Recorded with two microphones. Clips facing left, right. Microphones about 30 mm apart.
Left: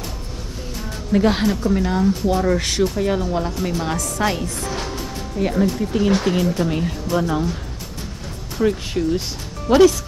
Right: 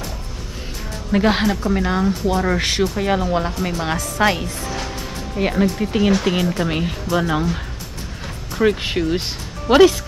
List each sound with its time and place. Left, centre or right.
1.1 s speech: centre
8.5 s speech: right